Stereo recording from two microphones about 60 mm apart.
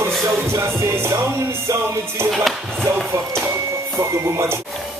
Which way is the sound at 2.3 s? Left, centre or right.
Centre.